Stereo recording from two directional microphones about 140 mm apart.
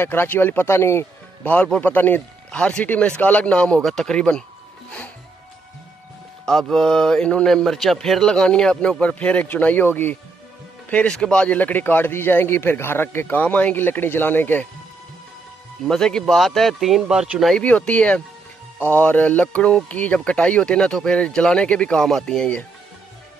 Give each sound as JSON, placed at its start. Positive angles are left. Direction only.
{"t": 0.0, "sound": "speech", "side_deg": 15}
{"t": 6.7, "sound": "speech", "side_deg": 5}
{"t": 15.9, "sound": "speech", "side_deg": 5}